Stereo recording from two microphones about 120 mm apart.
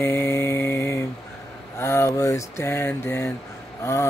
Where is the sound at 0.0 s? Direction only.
20° left (ahead or behind).